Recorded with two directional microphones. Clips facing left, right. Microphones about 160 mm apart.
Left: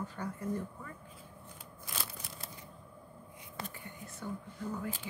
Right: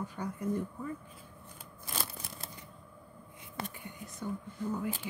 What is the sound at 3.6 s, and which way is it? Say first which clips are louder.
Whispering: right 4 dB; 65° right (ahead or behind).